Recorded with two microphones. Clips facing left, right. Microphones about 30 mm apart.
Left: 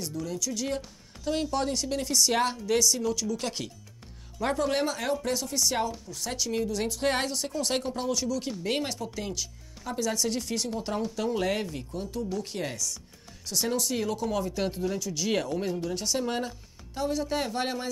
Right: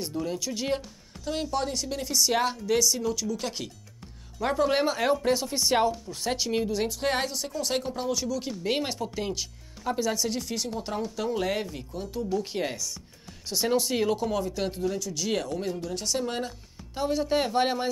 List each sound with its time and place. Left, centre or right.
0.0 s speech: right
1.2 s speech: centre; by 6.8 s right
6.8 s speech: centre
14.3 s speech: centre
16.9 s speech: centre